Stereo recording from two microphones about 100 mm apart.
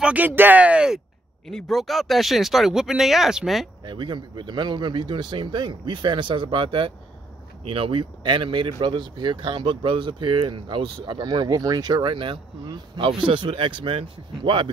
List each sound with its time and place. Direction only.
0.0 s speech: 15° right (ahead or behind)
3.8 s speech: 50° right (ahead or behind)
11.1 s speech: 40° right (ahead or behind)